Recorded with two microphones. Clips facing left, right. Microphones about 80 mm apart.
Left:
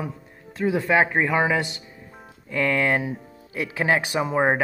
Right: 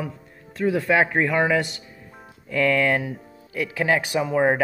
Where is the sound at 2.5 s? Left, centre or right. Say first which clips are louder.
Right 2 dB; centre.